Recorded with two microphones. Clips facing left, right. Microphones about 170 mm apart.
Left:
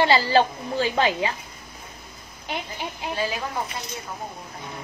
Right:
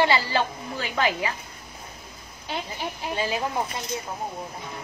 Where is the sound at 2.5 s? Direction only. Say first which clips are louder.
Even; 20° left (ahead or behind).